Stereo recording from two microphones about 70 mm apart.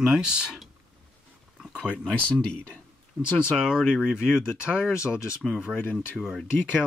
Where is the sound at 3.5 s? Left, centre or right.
Centre.